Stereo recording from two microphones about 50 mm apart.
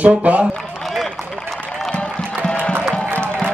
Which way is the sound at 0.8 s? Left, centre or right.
Centre.